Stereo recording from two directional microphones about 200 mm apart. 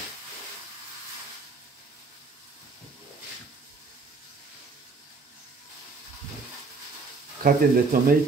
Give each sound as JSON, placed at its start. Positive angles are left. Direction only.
{"t": 7.4, "sound": "speech", "side_deg": -45}